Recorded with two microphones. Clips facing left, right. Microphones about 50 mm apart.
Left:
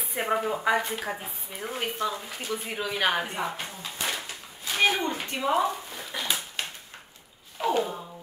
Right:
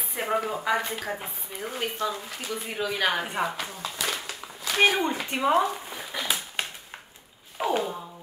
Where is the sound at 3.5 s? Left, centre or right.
Right.